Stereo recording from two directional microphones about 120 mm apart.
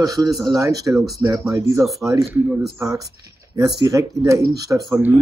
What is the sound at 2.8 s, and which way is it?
Speech, 25° right (ahead or behind).